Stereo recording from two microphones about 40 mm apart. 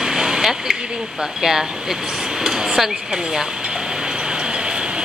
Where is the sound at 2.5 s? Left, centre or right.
Centre.